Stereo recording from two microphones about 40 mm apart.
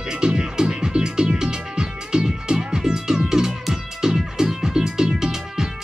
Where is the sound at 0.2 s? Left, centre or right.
Centre.